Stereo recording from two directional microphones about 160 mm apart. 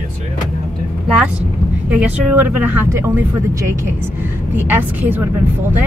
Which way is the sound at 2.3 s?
10° right (ahead or behind).